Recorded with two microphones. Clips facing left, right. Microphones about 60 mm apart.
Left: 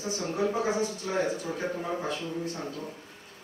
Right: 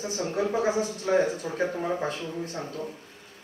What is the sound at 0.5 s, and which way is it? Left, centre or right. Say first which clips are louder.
Speech: right 3 dB; right.